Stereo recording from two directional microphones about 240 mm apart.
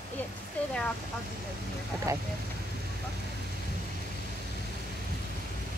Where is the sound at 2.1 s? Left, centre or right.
Centre.